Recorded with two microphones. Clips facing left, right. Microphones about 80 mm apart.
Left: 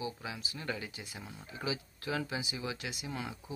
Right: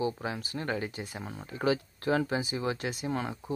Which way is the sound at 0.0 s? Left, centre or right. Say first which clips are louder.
Right 8 dB; right.